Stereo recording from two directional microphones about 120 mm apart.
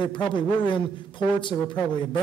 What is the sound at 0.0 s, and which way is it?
A man's voice, 40° left (ahead or behind).